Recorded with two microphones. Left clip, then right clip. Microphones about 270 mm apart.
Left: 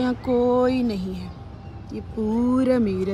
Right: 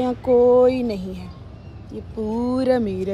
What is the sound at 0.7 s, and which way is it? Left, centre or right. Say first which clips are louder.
Speech: right 1 dB; centre.